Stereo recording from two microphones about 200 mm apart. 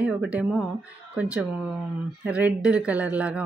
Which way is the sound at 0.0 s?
5° right (ahead or behind).